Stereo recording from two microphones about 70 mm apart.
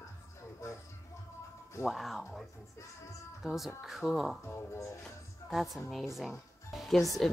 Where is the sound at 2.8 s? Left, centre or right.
Left.